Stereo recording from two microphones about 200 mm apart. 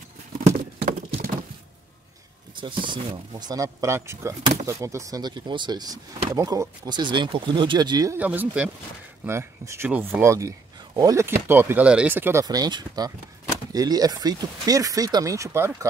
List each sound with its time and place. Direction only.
2.5 s speech: 25° right (ahead or behind)
4.4 s speech: 30° right (ahead or behind)
4.6 s speech: 15° right (ahead or behind)